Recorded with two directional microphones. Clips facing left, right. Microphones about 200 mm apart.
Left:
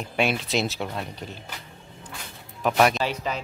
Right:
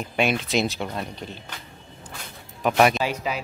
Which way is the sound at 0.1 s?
Centre (ahead or behind).